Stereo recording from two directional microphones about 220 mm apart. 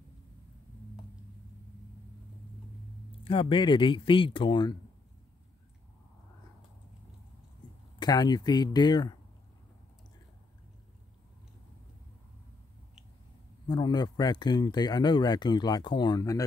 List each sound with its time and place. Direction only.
3.3 s speech: 25° left (ahead or behind)
8.0 s speech: 20° left (ahead or behind)
13.7 s speech: 20° left (ahead or behind)